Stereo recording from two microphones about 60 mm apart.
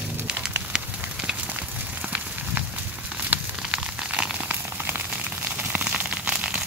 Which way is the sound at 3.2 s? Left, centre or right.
Centre.